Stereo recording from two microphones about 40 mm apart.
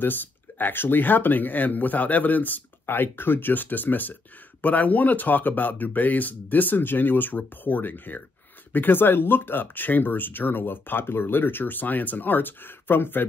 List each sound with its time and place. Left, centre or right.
0.0 s speech: left